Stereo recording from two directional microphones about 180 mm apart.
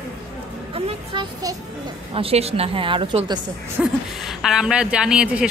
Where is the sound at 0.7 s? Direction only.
35° right (ahead or behind).